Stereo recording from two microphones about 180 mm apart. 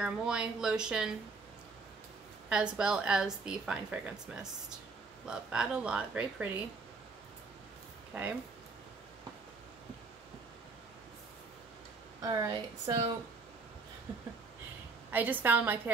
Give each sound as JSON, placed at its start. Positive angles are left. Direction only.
{"t": 0.0, "sound": "a woman's voice", "side_deg": -5}
{"t": 2.5, "sound": "a woman's voice", "side_deg": -5}
{"t": 8.1, "sound": "speech", "side_deg": -10}
{"t": 12.2, "sound": "speech", "side_deg": -20}
{"t": 14.1, "sound": "a sound", "side_deg": -30}
{"t": 15.0, "sound": "a woman's voice", "side_deg": -10}